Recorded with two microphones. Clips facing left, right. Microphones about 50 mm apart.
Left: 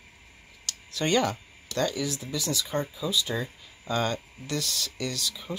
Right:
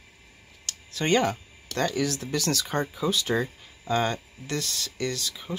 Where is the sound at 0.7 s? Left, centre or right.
Right.